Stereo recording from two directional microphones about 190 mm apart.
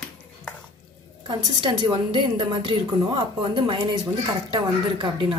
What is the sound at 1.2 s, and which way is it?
A woman's voice, 25° right (ahead or behind).